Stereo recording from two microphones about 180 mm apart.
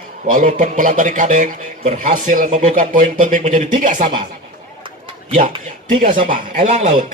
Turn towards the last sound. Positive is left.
turn(degrees=-40)  # may be behind; listen again after turning